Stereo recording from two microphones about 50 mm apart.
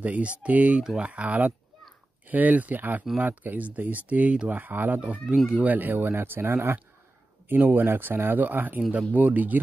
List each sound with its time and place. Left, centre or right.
0.0 s speech: right
5.0 s speech: right